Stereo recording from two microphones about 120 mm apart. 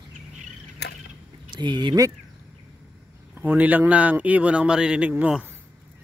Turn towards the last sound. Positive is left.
turn(degrees=-10)  # may be behind; listen again after turning